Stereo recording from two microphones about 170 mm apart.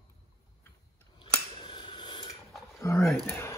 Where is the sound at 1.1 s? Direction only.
30° left (ahead or behind).